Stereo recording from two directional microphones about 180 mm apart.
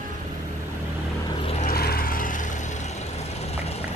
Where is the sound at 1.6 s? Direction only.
55° left (ahead or behind); by 3.7 s 35° left (ahead or behind).